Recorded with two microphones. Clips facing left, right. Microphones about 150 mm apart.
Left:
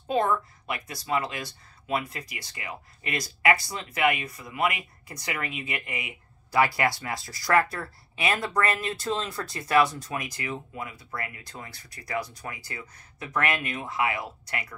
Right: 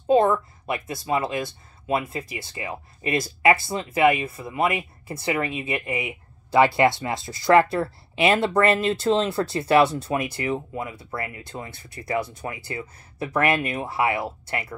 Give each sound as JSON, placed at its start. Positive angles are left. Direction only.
{"t": 0.1, "sound": "speech", "side_deg": -25}